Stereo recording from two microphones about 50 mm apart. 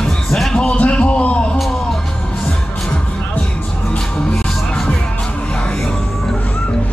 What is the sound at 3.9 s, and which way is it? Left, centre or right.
Music, centre.